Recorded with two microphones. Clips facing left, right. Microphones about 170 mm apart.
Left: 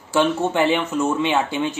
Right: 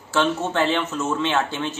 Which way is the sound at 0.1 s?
15° left (ahead or behind).